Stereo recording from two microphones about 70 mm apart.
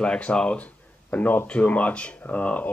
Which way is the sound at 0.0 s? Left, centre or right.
Centre.